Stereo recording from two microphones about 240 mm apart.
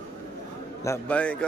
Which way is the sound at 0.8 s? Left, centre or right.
Centre.